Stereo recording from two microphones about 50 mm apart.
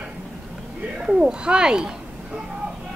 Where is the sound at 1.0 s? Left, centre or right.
Centre.